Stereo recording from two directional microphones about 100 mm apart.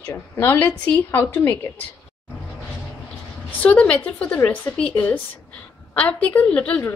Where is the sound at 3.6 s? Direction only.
15° left (ahead or behind).